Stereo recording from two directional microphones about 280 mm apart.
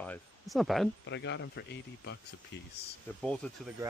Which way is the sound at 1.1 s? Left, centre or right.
Left.